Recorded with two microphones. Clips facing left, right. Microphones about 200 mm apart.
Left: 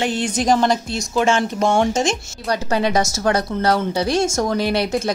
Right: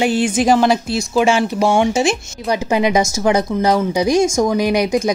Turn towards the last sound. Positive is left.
turn(degrees=-15)  # may be behind; listen again after turning